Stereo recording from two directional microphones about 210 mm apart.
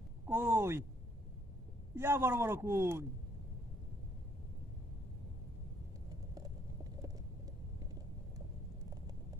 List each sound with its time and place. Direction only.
0.3 s a sound: 10° right (ahead or behind)
2.0 s a man's voice: 10° right (ahead or behind)
6.3 s vehicle: 15° right (ahead or behind)